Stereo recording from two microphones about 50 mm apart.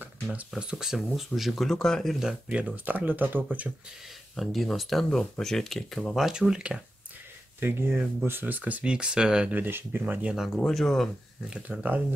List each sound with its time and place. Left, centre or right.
0.0 s a sound: right
0.6 s speech: centre
0.9 s speech: centre
2.1 s speech: centre
2.6 s speech: right
4.4 s speech: centre
6.5 s speech: centre
7.6 s speech: right
8.3 s speech: right
8.9 s speech: centre
9.7 s speech: right
10.3 s speech: centre
10.7 s speech: centre
11.7 s speech: right